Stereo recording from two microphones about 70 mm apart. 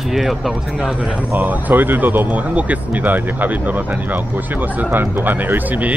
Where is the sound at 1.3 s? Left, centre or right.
Right.